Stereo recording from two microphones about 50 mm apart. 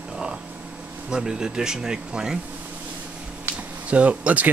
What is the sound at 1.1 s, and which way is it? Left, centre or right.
Speech, centre.